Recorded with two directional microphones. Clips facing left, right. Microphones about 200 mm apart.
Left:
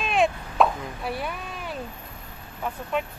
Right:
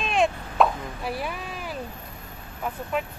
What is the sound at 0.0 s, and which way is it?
Plop, centre (ahead or behind).